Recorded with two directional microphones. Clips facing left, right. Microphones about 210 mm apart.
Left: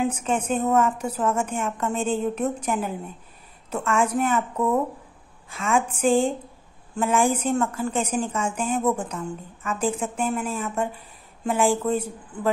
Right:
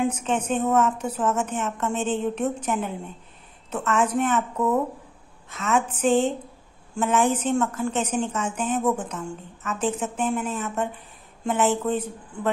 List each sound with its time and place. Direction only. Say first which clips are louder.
0.0 s a woman's voice: even; 5° left (ahead or behind)